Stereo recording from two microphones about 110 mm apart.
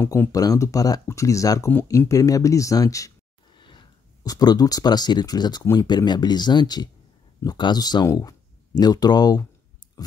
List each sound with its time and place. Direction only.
0.0 s speech: 25° left (ahead or behind)
3.5 s speech: 45° left (ahead or behind)
10.0 s a sound: 35° left (ahead or behind)